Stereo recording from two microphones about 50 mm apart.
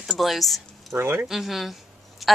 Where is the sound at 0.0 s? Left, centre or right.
Centre.